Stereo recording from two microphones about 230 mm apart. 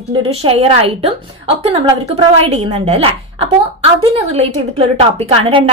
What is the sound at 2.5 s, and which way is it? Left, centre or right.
A woman's voice, right.